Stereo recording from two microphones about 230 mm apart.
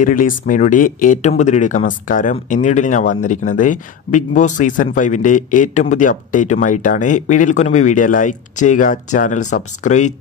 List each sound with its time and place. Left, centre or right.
0.0 s speech: left